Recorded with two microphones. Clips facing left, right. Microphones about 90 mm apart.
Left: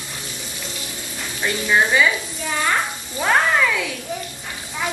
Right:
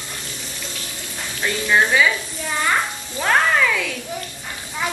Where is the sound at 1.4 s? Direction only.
5° left (ahead or behind).